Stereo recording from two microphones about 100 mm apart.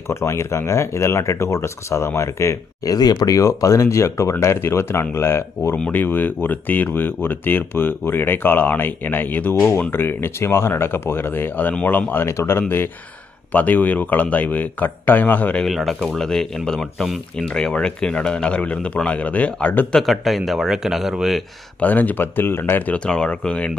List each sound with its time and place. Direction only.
0.1 s speech: 30° left (ahead or behind)
15.6 s speech: centre (ahead or behind)
20.0 s speech: centre (ahead or behind)
21.7 s speech: 15° left (ahead or behind)